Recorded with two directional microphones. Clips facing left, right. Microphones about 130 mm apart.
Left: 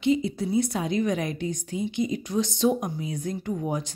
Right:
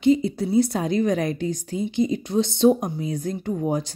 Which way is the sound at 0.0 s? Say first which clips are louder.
Right 5 dB; 40° right (ahead or behind).